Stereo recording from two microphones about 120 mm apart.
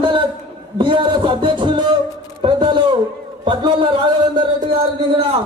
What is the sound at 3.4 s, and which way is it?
Music, 45° right (ahead or behind).